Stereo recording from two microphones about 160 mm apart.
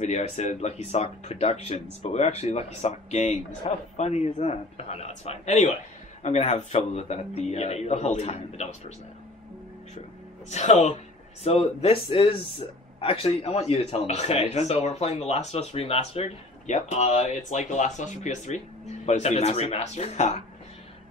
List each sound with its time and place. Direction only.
0.0 s speech: 45° left (ahead or behind)
10.5 s speech: 45° left (ahead or behind)